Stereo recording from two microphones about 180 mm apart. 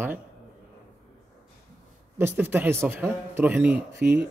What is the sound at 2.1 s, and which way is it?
Speech, 10° right (ahead or behind).